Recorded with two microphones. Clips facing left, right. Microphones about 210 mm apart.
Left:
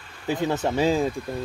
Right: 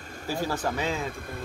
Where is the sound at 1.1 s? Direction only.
55° right (ahead or behind).